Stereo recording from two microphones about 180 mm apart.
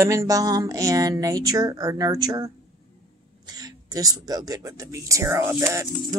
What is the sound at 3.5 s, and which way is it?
Speech, 20° right (ahead or behind).